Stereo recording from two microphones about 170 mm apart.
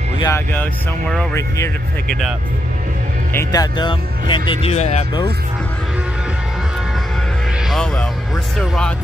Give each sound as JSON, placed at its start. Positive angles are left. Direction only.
{"t": 0.2, "sound": "speech", "side_deg": 15}
{"t": 2.0, "sound": "speech", "side_deg": 0}
{"t": 3.3, "sound": "speech", "side_deg": 25}
{"t": 7.7, "sound": "music", "side_deg": 5}
{"t": 8.5, "sound": "speech", "side_deg": 5}